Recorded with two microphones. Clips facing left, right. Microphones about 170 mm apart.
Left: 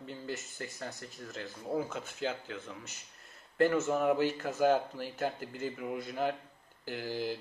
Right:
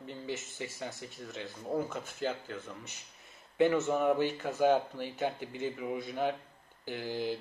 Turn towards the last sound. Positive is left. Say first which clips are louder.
# right 1 dB
turn(degrees=0)  # may be behind; listen again after turning